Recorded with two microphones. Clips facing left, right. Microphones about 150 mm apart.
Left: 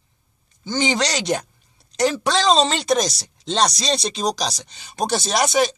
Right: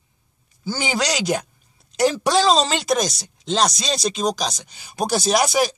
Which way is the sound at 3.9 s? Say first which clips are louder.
Even; 30° left (ahead or behind).